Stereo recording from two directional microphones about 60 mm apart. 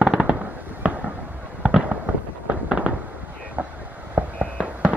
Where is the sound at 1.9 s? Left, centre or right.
Right.